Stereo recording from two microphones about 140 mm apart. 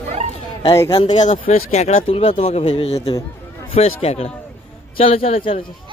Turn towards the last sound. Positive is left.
turn(degrees=40)  # may be behind; listen again after turning